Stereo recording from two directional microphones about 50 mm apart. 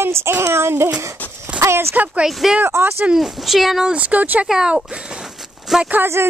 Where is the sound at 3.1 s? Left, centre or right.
Centre.